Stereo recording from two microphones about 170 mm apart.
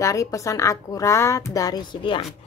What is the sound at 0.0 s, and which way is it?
A woman's voice, 20° left (ahead or behind).